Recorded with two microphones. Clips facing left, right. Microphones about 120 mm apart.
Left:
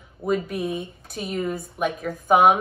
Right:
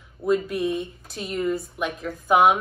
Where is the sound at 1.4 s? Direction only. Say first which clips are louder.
Even; 55° left (ahead or behind).